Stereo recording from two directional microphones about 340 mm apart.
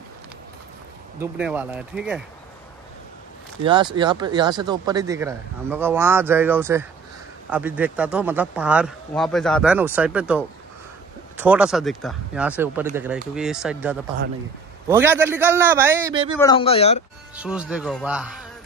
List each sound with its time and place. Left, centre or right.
1.2 s speech: centre
3.6 s speech: centre
16.3 s speech: centre
17.4 s speech: centre